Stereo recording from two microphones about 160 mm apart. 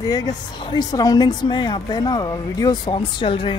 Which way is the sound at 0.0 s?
25° left (ahead or behind).